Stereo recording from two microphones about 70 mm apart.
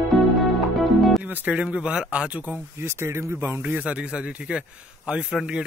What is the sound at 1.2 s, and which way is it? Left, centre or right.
Speech, centre.